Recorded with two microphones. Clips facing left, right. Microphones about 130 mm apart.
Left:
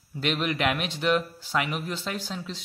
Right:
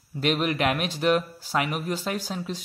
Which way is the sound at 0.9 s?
45° right (ahead or behind).